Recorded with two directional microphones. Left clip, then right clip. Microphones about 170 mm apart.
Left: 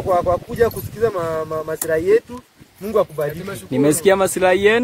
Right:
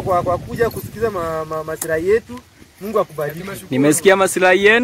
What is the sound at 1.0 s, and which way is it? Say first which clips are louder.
Speech: left 1 dB; 15° left (ahead or behind).